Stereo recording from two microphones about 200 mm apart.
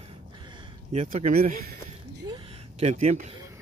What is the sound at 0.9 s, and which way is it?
Speech, 35° right (ahead or behind).